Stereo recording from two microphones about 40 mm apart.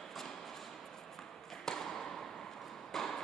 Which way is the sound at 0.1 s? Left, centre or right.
Centre.